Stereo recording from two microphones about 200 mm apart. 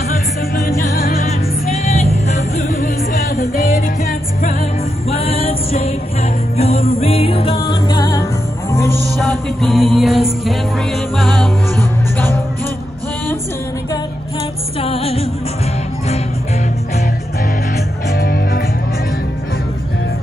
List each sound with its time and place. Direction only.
1.0 s music: 45° left (ahead or behind)
1.7 s music: 35° left (ahead or behind)
5.1 s music: 30° left (ahead or behind)
7.9 s music: 15° left (ahead or behind)
9.2 s music: centre (ahead or behind)
14.8 s music: 30° left (ahead or behind)
18.1 s music: 50° left (ahead or behind)